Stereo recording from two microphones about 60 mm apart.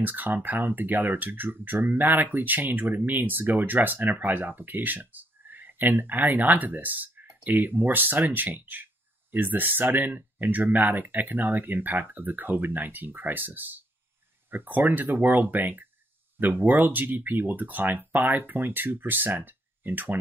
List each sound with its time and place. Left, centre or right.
0.0 s speech: right